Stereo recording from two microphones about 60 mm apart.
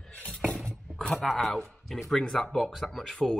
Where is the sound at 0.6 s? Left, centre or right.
Centre.